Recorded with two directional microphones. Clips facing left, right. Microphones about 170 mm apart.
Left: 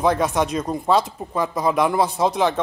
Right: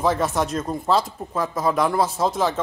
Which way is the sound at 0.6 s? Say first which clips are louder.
Left 2 dB; 15° left (ahead or behind).